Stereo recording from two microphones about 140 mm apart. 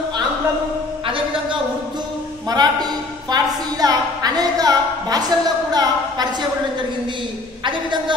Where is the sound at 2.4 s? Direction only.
30° right (ahead or behind).